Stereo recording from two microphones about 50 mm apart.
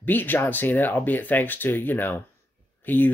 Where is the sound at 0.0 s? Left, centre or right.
Left.